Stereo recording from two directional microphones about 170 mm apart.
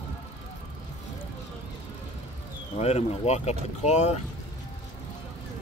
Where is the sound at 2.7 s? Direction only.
40° left (ahead or behind).